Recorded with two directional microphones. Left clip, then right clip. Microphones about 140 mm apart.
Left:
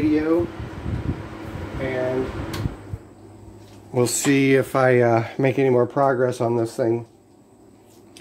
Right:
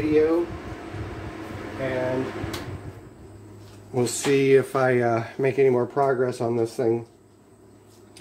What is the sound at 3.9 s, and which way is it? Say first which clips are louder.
Speech: left 2 dB; 60° left (ahead or behind).